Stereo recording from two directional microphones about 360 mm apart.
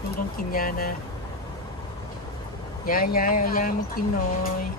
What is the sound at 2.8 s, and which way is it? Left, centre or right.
Speech, left.